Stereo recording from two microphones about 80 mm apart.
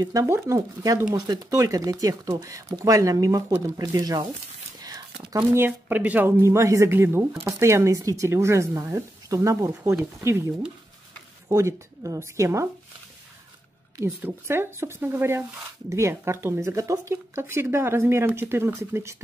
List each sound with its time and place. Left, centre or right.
0.0 s speech: right
5.9 s speech: right
6.4 s speech: right
6.9 s speech: right
14.2 s speech: right